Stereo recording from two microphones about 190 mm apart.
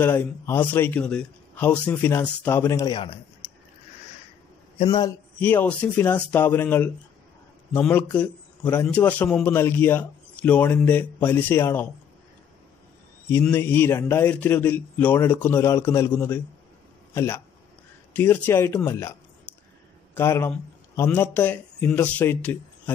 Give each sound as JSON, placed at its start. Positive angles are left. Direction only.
{"t": 0.0, "sound": "a man's voice", "side_deg": 10}
{"t": 2.9, "sound": "a man's voice", "side_deg": 25}
{"t": 4.8, "sound": "a man's voice", "side_deg": 20}
{"t": 5.4, "sound": "a man's voice", "side_deg": 10}
{"t": 13.3, "sound": "a man's voice", "side_deg": 10}
{"t": 20.2, "sound": "speech", "side_deg": 15}